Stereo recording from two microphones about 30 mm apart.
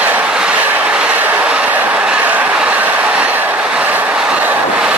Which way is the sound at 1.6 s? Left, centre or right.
Right.